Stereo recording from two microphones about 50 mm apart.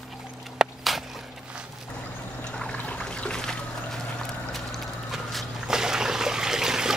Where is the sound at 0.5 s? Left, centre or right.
Centre.